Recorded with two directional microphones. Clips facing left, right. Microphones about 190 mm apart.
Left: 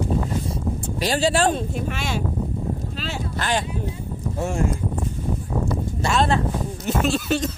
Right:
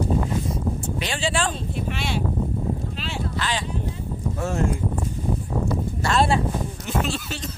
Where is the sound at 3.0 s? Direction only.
45° left (ahead or behind).